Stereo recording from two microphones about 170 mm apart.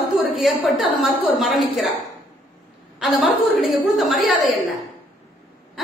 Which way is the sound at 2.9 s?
5° right (ahead or behind).